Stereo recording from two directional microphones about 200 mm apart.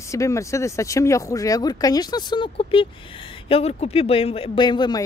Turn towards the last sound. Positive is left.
turn(degrees=20)  # may be behind; listen again after turning